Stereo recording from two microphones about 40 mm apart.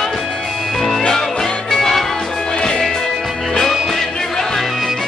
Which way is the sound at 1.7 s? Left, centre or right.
Centre.